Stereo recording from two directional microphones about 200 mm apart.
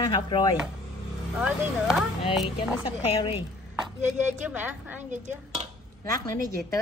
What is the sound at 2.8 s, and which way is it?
Speech, 25° left (ahead or behind).